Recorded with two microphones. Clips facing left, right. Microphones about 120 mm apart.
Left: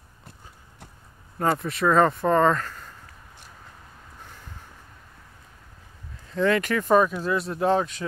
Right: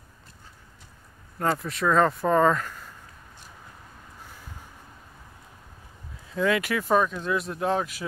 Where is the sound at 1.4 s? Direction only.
5° left (ahead or behind).